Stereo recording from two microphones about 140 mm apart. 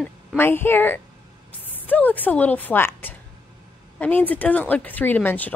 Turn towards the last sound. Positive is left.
turn(degrees=15)  # may be behind; listen again after turning